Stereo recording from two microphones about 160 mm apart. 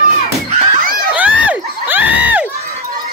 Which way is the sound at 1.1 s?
10° right (ahead or behind).